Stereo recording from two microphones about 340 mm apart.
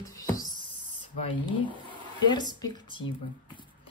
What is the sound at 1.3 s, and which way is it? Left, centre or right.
Speech, centre.